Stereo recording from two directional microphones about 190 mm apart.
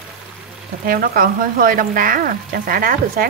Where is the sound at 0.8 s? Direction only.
50° right (ahead or behind).